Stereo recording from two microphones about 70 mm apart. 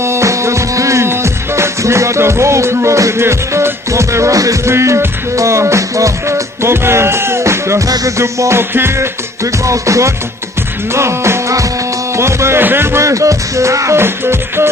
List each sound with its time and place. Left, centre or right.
0.0 s music: right
4.7 s music: right